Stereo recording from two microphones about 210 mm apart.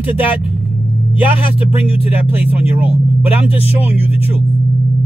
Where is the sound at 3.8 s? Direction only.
30° left (ahead or behind).